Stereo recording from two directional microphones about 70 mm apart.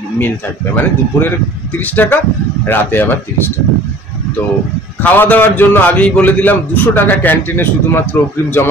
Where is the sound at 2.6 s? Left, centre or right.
Left.